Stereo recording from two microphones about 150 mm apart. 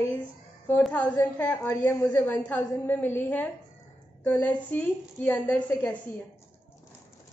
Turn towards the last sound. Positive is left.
turn(degrees=15)  # may be behind; listen again after turning